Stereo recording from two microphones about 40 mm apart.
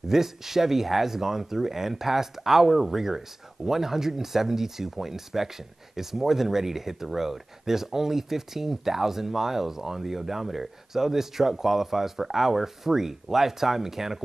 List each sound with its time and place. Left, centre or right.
0.1 s speech: centre